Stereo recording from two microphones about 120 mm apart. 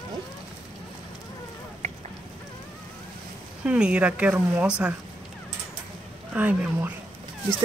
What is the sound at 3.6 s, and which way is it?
Speech, 10° right (ahead or behind).